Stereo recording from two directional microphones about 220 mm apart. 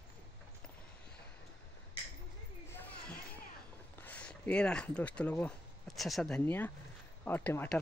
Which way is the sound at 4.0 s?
5° left (ahead or behind).